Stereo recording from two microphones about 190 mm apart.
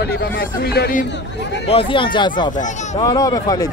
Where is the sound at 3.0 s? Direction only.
20° left (ahead or behind).